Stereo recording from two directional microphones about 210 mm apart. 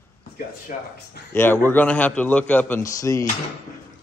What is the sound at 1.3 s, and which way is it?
Speech, 10° left (ahead or behind).